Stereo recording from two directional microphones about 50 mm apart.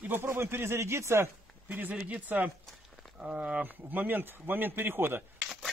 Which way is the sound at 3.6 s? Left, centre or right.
Right.